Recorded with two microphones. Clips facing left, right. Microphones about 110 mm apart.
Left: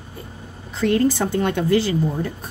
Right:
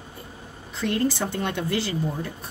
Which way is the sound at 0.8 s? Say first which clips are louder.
Left 6 dB; 50° left (ahead or behind).